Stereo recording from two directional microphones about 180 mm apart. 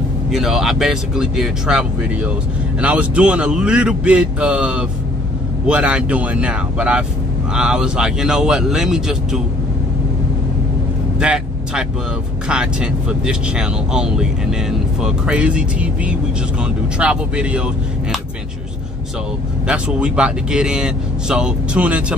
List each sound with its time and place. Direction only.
0.3 s speech: centre (ahead or behind)
11.1 s vehicle: 5° right (ahead or behind)
12.4 s speech: 5° right (ahead or behind)
19.7 s speech: 5° right (ahead or behind)